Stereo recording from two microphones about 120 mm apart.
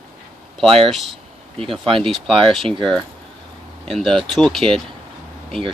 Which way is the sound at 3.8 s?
5° left (ahead or behind).